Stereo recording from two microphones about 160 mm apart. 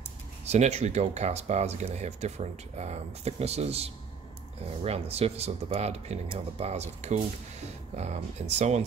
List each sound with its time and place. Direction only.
0.5 s speech: 45° right (ahead or behind)